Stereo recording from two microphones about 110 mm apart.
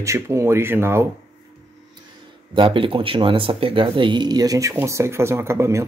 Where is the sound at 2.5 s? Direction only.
50° right (ahead or behind).